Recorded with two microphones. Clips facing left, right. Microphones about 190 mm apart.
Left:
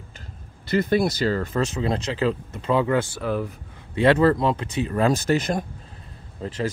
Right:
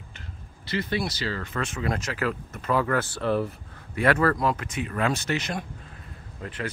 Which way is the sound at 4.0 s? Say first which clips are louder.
Left 5 dB; 25° left (ahead or behind).